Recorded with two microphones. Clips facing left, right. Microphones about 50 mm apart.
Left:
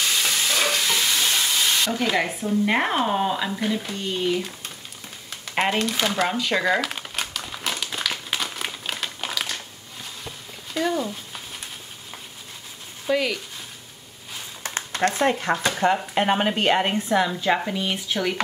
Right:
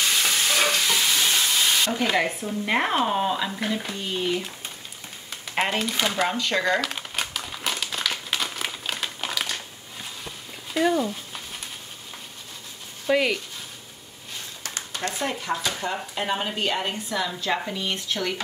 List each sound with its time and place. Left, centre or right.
0.0 s stir: centre
3.5 s speech: centre
5.3 s shuffling cards: centre
10.2 s a sound: centre
13.1 s speech: centre
14.9 s speech: left
16.9 s a woman's voice: left
17.3 s speech: centre